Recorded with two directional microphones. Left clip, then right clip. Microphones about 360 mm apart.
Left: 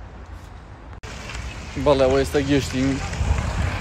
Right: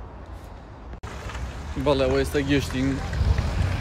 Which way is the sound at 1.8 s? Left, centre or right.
Centre.